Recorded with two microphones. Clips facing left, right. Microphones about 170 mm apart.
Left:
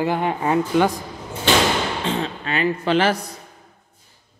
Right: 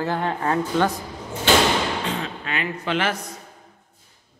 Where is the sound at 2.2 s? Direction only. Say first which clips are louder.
Left 6 dB; 35° left (ahead or behind).